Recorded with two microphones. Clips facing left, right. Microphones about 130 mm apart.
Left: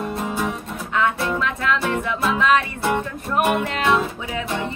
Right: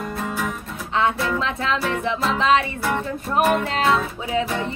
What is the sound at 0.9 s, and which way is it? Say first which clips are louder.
Music: even; 25° right (ahead or behind).